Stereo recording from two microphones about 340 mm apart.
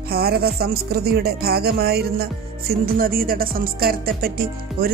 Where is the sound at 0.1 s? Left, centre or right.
Right.